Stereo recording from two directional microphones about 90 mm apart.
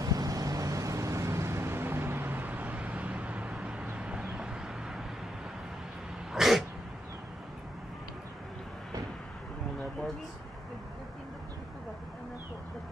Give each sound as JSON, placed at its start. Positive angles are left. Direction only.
{"t": 0.0, "sound": "vehicle", "side_deg": -40}
{"t": 6.3, "sound": "throat clearing", "side_deg": -5}